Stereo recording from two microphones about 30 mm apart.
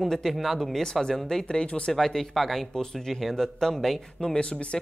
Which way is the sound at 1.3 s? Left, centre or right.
Left.